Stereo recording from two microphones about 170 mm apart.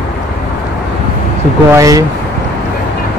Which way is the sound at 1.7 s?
20° right (ahead or behind).